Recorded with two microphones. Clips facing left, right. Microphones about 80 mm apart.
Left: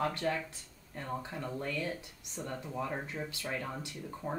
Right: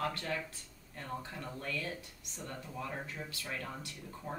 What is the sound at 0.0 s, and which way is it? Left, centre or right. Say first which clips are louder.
Speech: left 4 dB; centre.